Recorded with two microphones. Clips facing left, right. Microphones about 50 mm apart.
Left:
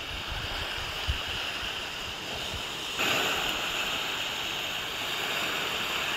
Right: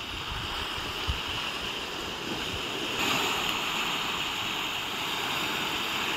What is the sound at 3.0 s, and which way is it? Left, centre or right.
Waves, left.